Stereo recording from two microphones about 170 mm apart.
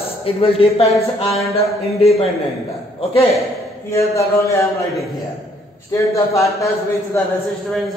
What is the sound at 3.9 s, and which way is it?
Speech, 15° left (ahead or behind).